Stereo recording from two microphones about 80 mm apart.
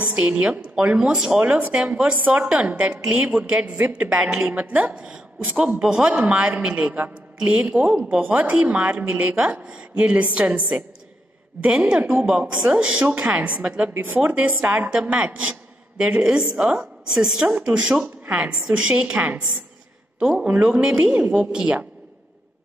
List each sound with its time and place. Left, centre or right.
0.1 s a man's voice: centre
5.0 s a woman's voice: centre; by 12.3 s right
12.3 s a man's voice: centre